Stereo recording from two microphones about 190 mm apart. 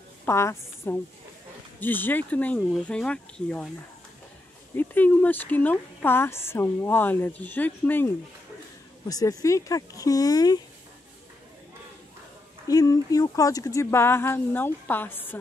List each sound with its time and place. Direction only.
0.2 s a woman's voice: 15° left (ahead or behind)
4.7 s speech: 10° left (ahead or behind)
9.1 s speech: 20° left (ahead or behind)
12.6 s speech: 20° left (ahead or behind)